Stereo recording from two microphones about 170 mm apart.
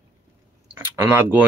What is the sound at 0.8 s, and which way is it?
Speech, 10° right (ahead or behind).